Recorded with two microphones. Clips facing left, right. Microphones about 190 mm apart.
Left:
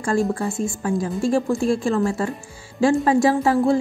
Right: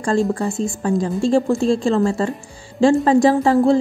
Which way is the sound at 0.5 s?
20° right (ahead or behind).